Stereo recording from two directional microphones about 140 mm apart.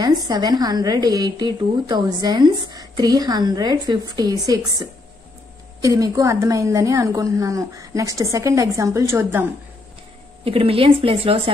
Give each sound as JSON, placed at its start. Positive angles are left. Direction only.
{"t": 0.0, "sound": "a woman's voice", "side_deg": -30}
{"t": 10.4, "sound": "a woman's voice", "side_deg": -40}